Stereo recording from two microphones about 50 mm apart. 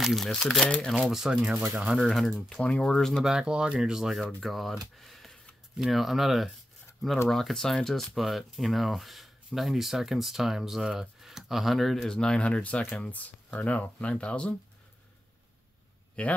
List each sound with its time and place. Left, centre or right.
0.0 s speech: centre
1.1 s speech: centre
2.0 s speech: centre
2.6 s speech: left
3.3 s speech: centre; by 14.5 s left
16.2 s speech: left